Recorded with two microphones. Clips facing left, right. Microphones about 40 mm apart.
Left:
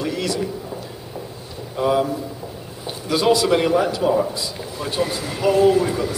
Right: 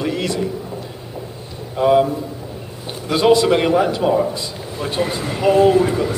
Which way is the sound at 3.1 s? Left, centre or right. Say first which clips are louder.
Right 3 dB; centre.